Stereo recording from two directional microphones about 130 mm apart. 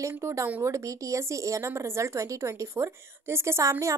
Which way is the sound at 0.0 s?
20° right (ahead or behind).